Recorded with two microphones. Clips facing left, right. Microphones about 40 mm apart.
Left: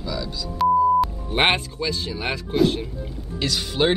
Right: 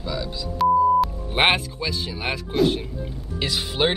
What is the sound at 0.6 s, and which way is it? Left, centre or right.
Speech, centre.